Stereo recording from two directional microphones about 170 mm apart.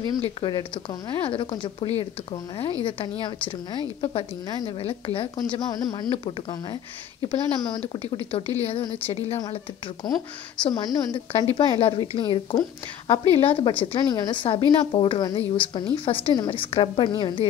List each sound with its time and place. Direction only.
0.2 s a woman's voice: 25° left (ahead or behind)
5.4 s a woman's voice: 20° left (ahead or behind)
10.1 s a woman's voice: 20° left (ahead or behind)